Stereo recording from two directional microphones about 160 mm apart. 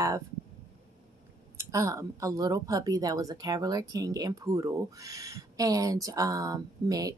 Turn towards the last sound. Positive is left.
turn(degrees=-20)  # may be behind; listen again after turning